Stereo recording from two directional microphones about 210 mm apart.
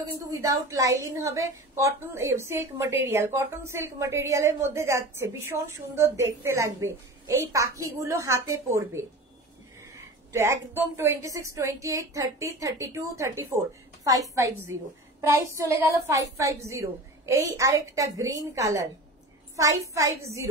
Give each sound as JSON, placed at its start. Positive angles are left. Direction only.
{"t": 0.3, "sound": "a woman's voice", "side_deg": -15}